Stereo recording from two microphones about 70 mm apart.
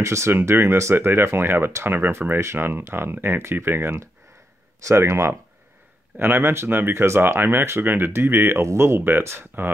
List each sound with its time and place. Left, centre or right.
0.0 s speech: right